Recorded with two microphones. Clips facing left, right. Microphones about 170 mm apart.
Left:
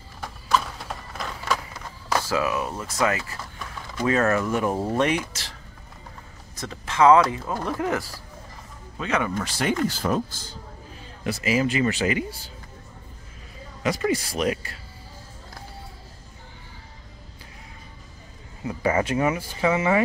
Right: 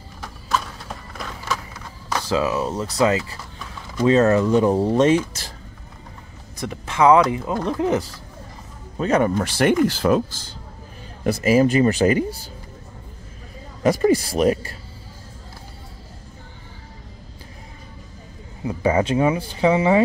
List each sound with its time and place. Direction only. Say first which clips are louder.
2.1 s speech: right 3 dB; 20° right (ahead or behind)
6.6 s speech: right 1 dB; 15° right (ahead or behind)
8.9 s speech: right 7 dB; 40° right (ahead or behind)
9.4 s speech: right 7 dB; 65° right (ahead or behind)
9.8 s speech: right 6 dB; 90° right
11.2 s speech: right 7 dB; 45° right (ahead or behind)
13.8 s speech: right 7 dB; 40° right (ahead or behind)
18.6 s a sound: right 4 dB; 25° right (ahead or behind)
19.0 s speech: right 4 dB; 25° right (ahead or behind)